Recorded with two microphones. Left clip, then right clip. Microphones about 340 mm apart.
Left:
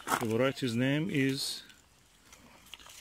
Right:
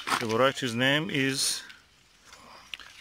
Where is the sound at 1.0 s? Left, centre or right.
Right.